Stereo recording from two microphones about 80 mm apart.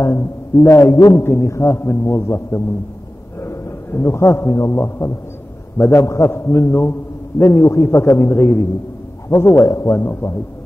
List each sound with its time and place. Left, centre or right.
0.0 s a man's voice: left